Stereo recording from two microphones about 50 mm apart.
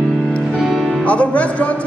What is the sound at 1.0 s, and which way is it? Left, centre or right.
Music, left.